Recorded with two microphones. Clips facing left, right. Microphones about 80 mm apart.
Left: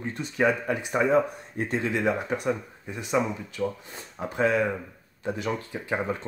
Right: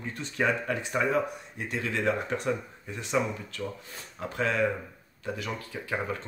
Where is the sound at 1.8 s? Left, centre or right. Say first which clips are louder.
Even; centre.